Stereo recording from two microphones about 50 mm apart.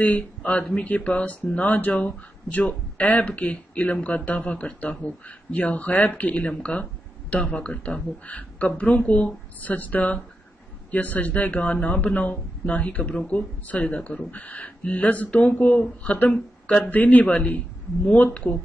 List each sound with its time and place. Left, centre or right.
0.0 s a man's voice: left